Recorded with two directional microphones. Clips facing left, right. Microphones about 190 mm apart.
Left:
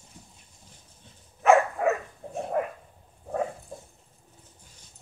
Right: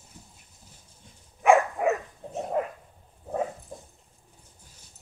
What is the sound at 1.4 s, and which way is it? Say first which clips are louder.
Dog: even; 15° right (ahead or behind).